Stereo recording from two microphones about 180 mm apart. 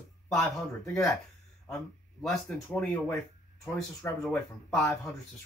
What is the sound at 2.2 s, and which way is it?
Speech, centre (ahead or behind).